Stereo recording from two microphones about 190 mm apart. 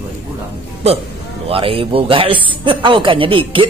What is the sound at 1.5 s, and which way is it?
A man's voice, 30° right (ahead or behind).